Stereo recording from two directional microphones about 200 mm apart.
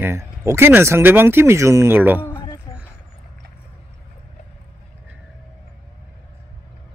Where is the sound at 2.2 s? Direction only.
20° left (ahead or behind).